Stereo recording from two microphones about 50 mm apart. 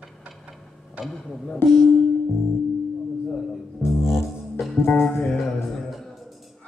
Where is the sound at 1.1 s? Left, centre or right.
Centre.